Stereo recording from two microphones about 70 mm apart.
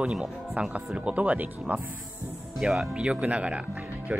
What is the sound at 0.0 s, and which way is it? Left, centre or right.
Speech, centre.